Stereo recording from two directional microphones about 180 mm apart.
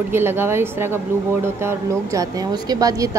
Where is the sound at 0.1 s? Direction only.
15° right (ahead or behind).